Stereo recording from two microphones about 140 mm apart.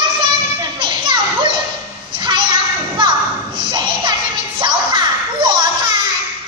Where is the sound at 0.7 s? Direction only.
35° right (ahead or behind).